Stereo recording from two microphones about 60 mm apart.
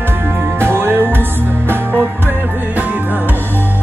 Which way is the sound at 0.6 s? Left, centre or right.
Right.